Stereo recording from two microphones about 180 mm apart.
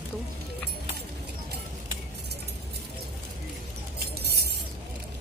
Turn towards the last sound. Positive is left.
turn(degrees=-60)  # may be behind; listen again after turning